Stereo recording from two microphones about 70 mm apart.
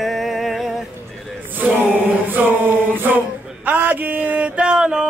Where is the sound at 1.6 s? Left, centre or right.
Right.